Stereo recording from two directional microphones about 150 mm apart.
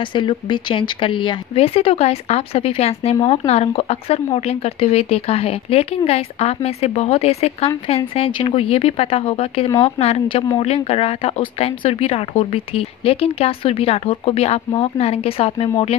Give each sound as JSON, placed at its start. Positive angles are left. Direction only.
{"t": 0.1, "sound": "speech", "side_deg": 30}